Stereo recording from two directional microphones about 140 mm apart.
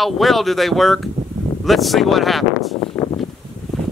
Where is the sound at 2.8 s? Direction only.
40° left (ahead or behind).